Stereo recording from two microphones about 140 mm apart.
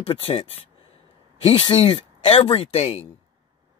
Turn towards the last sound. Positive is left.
turn(degrees=50)  # may be behind; listen again after turning